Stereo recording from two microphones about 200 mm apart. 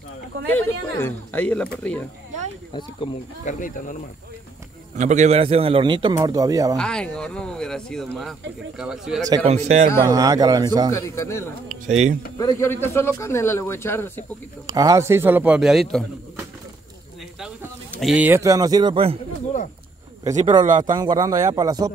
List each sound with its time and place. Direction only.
0.5 s a man's voice: 10° left (ahead or behind)
3.4 s speech: 40° left (ahead or behind)
4.9 s speech: 35° right (ahead or behind); by 6.8 s 15° right (ahead or behind)
6.8 s speech: 5° left (ahead or behind)
9.5 s speech: 35° right (ahead or behind)
10.0 s speech: 20° right (ahead or behind)
10.9 s a man's voice: 15° left (ahead or behind)
11.9 s speech: 35° right (ahead or behind)
12.4 s a man's voice: 15° left (ahead or behind)
14.7 s a man's voice: 15° right (ahead or behind); by 16.1 s centre (ahead or behind)
17.9 s speech: centre (ahead or behind)
18.3 s speech: 15° right (ahead or behind)
20.6 s speech: 40° right (ahead or behind)
20.9 s speech: 20° right (ahead or behind)